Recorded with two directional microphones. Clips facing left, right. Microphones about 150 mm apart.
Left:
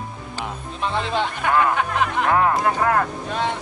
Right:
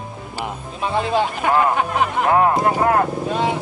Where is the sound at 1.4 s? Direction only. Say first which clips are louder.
Right 1 dB; 40° right (ahead or behind).